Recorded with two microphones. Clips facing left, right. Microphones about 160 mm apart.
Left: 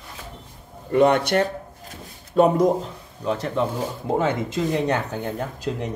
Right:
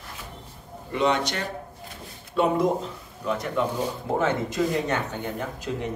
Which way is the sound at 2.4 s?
45° left (ahead or behind).